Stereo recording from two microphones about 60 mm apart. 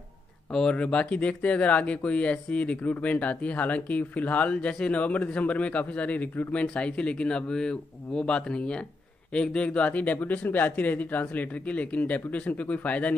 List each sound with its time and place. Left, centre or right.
0.5 s speech: centre